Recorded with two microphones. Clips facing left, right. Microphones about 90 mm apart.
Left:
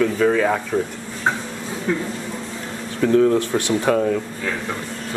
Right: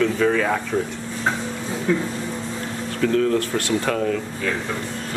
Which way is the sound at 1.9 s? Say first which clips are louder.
Right 1 dB; 10° left (ahead or behind).